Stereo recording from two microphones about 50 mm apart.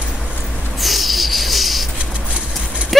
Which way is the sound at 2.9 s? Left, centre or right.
Centre.